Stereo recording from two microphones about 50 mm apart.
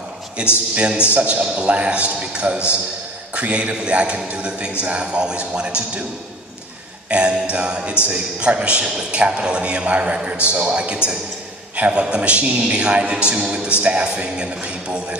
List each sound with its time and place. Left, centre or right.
0.4 s a man's voice: right
7.1 s mantra: right
7.5 s a man's voice: right
11.7 s a sound: right
12.0 s a man's voice: right